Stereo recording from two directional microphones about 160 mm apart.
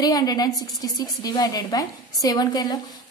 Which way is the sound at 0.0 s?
25° left (ahead or behind).